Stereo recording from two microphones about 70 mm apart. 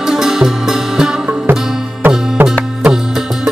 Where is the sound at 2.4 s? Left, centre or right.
Right.